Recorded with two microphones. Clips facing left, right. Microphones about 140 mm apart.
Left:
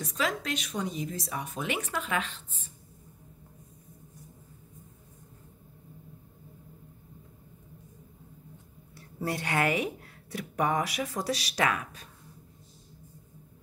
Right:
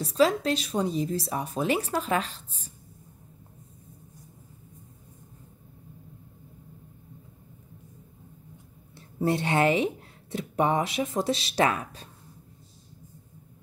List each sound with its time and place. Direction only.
0.0 s speech: 30° right (ahead or behind)
8.9 s speech: 25° right (ahead or behind)